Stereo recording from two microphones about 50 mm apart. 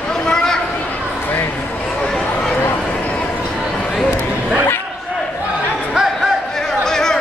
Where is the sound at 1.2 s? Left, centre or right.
Left.